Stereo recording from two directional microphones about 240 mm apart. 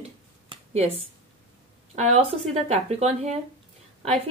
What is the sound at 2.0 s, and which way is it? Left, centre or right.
A woman's voice, right.